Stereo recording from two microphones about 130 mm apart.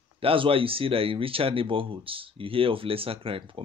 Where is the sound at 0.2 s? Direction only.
45° right (ahead or behind).